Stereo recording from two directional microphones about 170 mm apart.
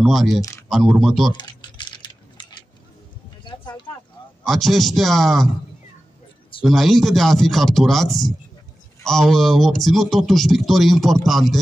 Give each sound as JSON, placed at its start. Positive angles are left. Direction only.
{"t": 0.0, "sound": "a man's voice", "side_deg": 0}
{"t": 0.4, "sound": "a sound", "side_deg": 20}
{"t": 0.7, "sound": "a man's voice", "side_deg": 0}
{"t": 1.3, "sound": "typing", "side_deg": 25}
{"t": 3.4, "sound": "a sound", "side_deg": 25}
{"t": 4.5, "sound": "a man's voice", "side_deg": 0}
{"t": 6.6, "sound": "a man's voice", "side_deg": 0}